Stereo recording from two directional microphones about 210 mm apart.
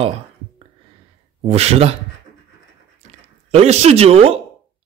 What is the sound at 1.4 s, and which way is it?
Speech, 30° right (ahead or behind).